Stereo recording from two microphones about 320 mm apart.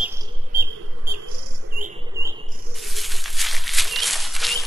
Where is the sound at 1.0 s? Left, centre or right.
Right.